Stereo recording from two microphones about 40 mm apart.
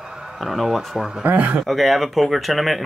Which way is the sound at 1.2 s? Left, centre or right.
Right.